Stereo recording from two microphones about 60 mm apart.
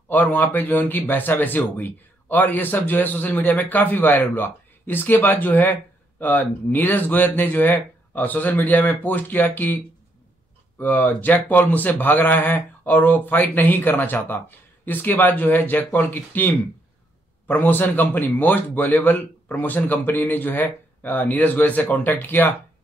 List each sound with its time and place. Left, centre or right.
0.1 s a man's voice: left
10.8 s a man's voice: left